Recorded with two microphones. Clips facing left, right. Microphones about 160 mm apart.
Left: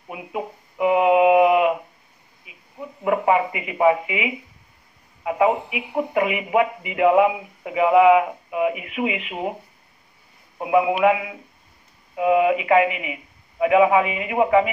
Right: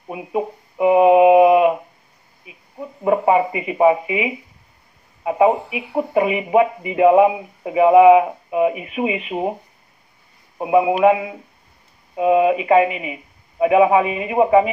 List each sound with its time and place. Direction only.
0.1 s speech: 30° right (ahead or behind)
10.6 s speech: 25° right (ahead or behind)